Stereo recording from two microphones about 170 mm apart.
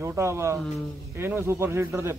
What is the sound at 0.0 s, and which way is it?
Speech, 15° right (ahead or behind).